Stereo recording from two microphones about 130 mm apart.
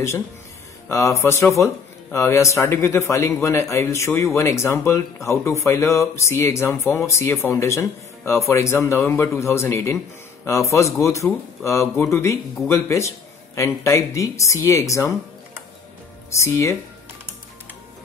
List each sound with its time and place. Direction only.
0.8 s a man's voice: 20° left (ahead or behind)
16.3 s a man's voice: 20° left (ahead or behind)